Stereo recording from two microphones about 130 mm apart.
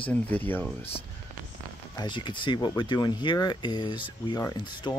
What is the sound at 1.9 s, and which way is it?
Speech, 35° left (ahead or behind).